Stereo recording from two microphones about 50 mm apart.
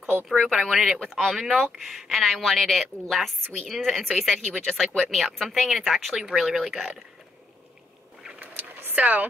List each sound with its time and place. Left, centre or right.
0.5 s speech: centre
8.9 s speech: right